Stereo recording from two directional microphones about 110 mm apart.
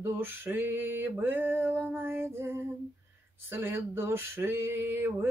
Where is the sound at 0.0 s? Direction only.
20° right (ahead or behind).